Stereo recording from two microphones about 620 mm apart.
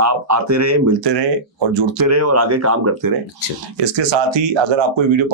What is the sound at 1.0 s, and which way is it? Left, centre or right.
Speech, right.